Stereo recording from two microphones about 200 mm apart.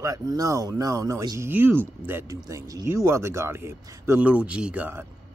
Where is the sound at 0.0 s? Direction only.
15° right (ahead or behind).